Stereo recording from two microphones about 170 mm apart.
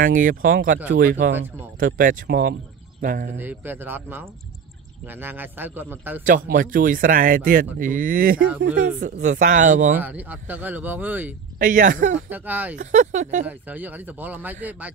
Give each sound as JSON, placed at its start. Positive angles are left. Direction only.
{"t": 0.0, "sound": "speech", "side_deg": -55}
{"t": 3.3, "sound": "speech", "side_deg": -10}
{"t": 6.2, "sound": "speech", "side_deg": -55}
{"t": 9.9, "sound": "speech", "side_deg": -10}
{"t": 11.5, "sound": "speech", "side_deg": -55}
{"t": 12.3, "sound": "speech", "side_deg": -10}
{"t": 12.7, "sound": "speech", "side_deg": -50}
{"t": 13.5, "sound": "speech", "side_deg": -10}